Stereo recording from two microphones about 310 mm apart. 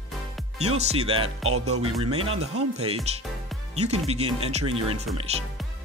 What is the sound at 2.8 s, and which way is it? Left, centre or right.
Speech, centre.